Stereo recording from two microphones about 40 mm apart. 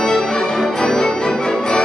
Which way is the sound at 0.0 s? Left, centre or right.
Centre.